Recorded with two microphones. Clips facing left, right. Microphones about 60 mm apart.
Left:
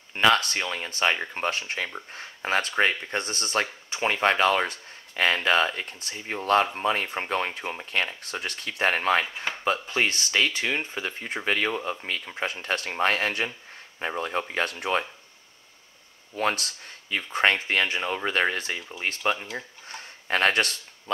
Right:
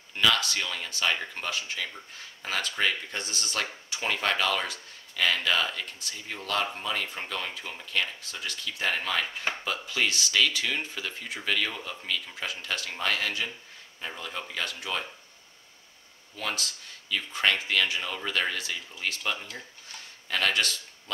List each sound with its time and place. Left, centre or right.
0.1 s speech: left
16.3 s speech: left
19.9 s a sound: left